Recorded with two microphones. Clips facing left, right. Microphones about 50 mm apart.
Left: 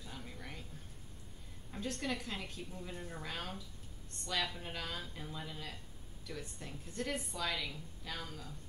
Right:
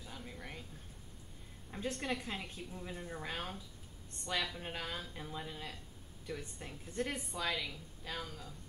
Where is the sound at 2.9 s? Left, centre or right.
Centre.